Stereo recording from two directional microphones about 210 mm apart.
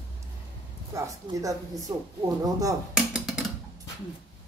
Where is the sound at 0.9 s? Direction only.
15° right (ahead or behind).